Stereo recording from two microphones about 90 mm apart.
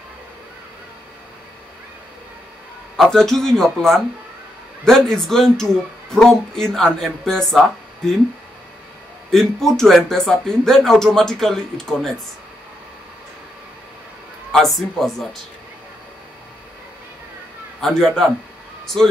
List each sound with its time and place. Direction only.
3.0 s speech: 5° left (ahead or behind)
9.3 s speech: 5° left (ahead or behind)
14.5 s speech: 5° left (ahead or behind)
17.7 s speech: 5° left (ahead or behind)